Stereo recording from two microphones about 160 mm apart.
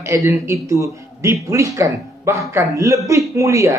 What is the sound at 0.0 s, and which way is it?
Speech, 20° right (ahead or behind).